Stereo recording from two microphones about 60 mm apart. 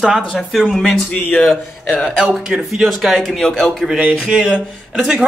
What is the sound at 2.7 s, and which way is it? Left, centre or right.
Speech, centre.